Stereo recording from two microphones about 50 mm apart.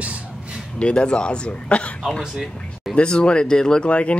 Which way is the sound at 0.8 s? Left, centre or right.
Left.